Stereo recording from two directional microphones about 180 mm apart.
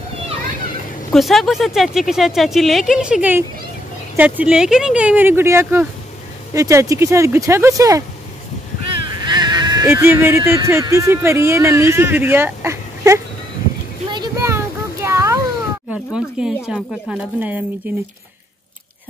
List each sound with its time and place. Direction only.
1.1 s speech: centre (ahead or behind); by 8.0 s 20° right (ahead or behind)
9.0 s speech: 25° right (ahead or behind)
14.1 s a sound: 20° right (ahead or behind)
15.9 s speech: 5° right (ahead or behind)